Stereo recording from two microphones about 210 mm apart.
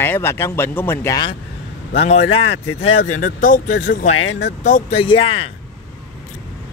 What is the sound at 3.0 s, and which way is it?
Speech, 90° left.